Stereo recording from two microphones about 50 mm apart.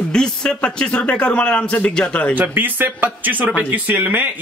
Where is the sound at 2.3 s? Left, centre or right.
Right.